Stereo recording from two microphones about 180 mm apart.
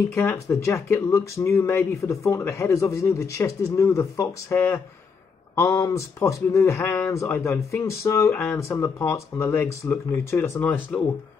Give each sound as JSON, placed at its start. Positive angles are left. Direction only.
{"t": 0.1, "sound": "speech", "side_deg": 15}